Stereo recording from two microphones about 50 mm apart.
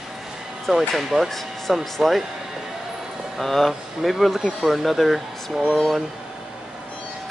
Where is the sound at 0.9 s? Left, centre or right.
Centre.